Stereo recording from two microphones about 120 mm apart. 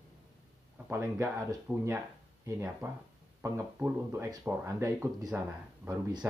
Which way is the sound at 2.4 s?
20° right (ahead or behind).